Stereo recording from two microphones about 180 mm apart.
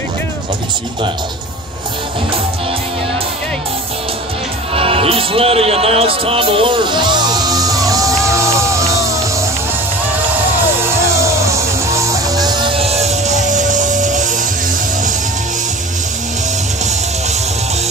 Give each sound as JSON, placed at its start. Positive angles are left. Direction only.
{"t": 4.7, "sound": "music", "side_deg": -30}
{"t": 11.0, "sound": "music", "side_deg": -15}